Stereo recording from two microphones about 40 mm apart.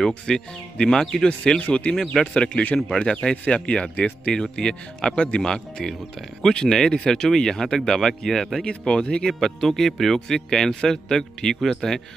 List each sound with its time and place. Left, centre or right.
0.1 s speech: left
4.3 s speech: left
8.6 s speech: left
9.3 s speech: centre